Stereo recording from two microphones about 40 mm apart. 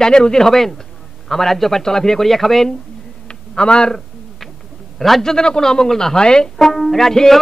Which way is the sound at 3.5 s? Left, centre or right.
Left.